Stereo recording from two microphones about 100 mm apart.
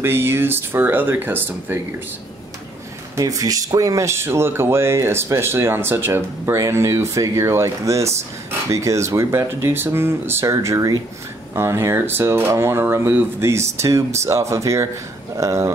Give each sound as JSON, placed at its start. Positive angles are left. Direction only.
{"t": 0.0, "sound": "speech", "side_deg": -25}
{"t": 3.2, "sound": "speech", "side_deg": -35}